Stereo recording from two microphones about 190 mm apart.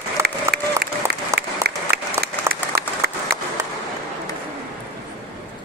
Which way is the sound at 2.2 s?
55° right (ahead or behind).